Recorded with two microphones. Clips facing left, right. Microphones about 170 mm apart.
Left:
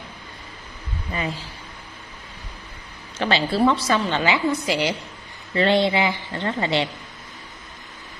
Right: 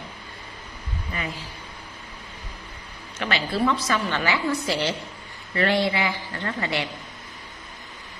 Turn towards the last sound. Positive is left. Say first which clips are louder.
# left 5 dB
turn(degrees=25)  # may be behind; listen again after turning